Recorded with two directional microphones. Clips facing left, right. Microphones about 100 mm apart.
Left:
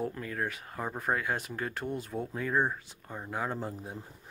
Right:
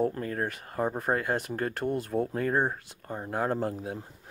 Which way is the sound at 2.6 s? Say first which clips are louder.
Right 2 dB; 30° right (ahead or behind).